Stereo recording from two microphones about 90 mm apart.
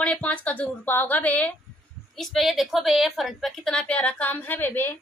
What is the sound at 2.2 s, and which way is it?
A woman's voice, centre (ahead or behind).